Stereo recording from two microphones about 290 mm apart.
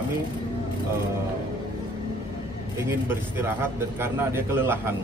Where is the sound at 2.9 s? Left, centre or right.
Centre.